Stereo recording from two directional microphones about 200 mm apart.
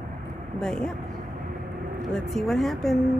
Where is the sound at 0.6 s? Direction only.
5° left (ahead or behind).